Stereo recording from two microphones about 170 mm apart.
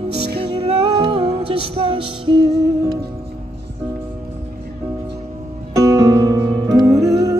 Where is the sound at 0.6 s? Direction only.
35° right (ahead or behind).